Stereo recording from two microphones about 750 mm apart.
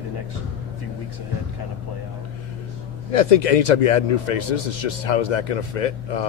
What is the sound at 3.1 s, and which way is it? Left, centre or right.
Speech, left.